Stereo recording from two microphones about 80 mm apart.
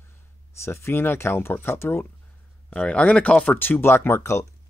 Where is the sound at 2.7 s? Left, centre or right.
Centre.